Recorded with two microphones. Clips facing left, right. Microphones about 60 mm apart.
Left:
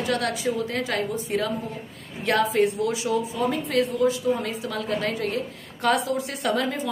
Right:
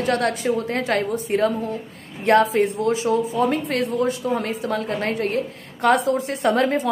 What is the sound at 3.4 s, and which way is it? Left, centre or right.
A woman's voice, right.